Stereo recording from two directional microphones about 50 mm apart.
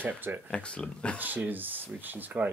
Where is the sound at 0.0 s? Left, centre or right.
Right.